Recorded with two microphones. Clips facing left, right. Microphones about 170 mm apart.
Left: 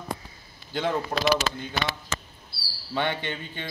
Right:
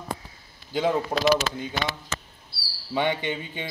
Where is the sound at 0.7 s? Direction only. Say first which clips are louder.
Right 3 dB; 10° right (ahead or behind).